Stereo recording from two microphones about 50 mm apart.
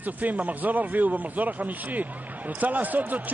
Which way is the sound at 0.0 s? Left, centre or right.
Right.